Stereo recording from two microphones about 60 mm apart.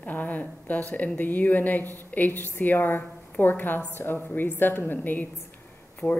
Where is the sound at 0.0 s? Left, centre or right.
Left.